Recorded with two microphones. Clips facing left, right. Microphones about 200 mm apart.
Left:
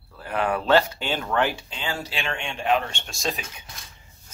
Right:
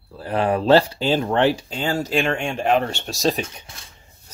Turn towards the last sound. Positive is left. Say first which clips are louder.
# right 8 dB
turn(degrees=-40)  # may be behind; listen again after turning